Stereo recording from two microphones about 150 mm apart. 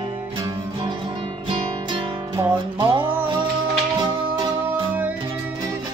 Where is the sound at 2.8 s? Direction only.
35° right (ahead or behind).